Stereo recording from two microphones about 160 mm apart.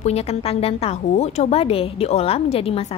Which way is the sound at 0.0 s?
40° left (ahead or behind).